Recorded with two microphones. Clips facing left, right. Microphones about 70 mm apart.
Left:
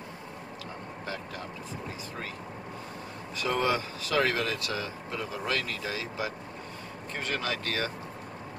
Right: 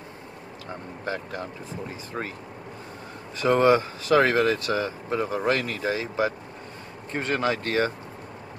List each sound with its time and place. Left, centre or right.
1.0 s speech: right
3.3 s speech: right